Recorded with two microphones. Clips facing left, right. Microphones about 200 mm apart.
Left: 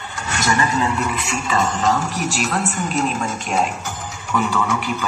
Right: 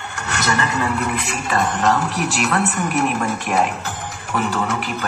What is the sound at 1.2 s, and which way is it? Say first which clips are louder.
A woman's voice: even; 55° right (ahead or behind).